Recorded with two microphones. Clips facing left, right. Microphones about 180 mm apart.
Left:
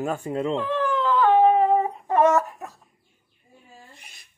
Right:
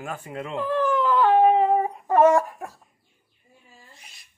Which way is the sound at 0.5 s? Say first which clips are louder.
Right 1 dB; 10° right (ahead or behind).